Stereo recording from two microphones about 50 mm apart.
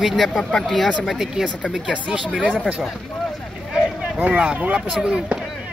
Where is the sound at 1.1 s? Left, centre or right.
Centre.